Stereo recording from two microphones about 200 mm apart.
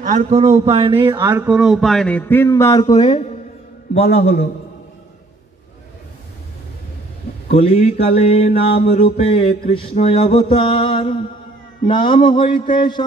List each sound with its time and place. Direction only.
0.0 s a man's voice: 40° right (ahead or behind)
1.2 s a sound: 10° right (ahead or behind); by 3.2 s 20° left (ahead or behind)
4.2 s a man's voice: 50° left (ahead or behind)
7.5 s mantra: 30° left (ahead or behind)